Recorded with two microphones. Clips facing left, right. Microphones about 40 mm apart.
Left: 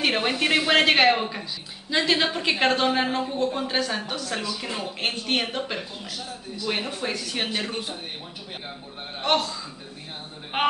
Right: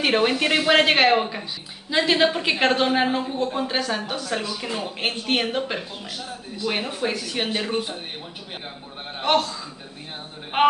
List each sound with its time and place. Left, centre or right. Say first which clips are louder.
0.0 s a woman's voice: right 3 dB; centre
9.2 s speech: right 2 dB; centre